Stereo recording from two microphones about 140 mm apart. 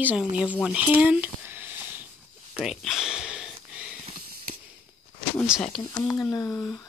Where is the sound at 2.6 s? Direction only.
Centre (ahead or behind).